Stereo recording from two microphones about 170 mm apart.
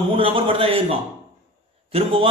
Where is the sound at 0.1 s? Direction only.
30° right (ahead or behind).